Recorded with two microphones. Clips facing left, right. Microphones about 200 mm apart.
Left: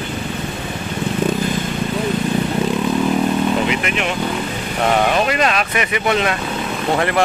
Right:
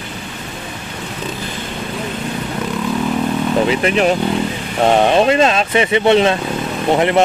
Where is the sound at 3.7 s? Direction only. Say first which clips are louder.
Right 6 dB; 35° right (ahead or behind).